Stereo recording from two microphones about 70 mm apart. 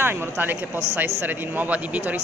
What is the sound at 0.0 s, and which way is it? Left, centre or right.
A man's voice, right.